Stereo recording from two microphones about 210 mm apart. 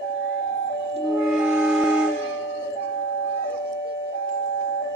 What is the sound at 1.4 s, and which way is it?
Music, 10° right (ahead or behind).